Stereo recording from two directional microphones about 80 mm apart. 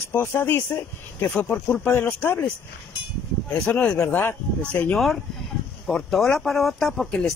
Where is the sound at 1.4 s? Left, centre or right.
Centre.